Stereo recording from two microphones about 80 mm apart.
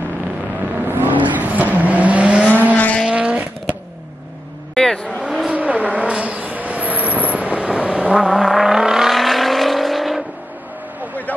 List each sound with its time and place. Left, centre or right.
0.8 s vehicle: right
2.7 s vehicle: centre
3.1 s vehicle: centre
4.7 s vehicle: centre
5.2 s vehicle: centre
5.5 s vehicle: centre